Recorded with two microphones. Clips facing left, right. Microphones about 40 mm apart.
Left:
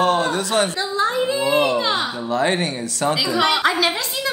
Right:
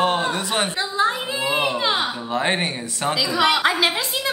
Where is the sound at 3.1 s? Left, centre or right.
Centre.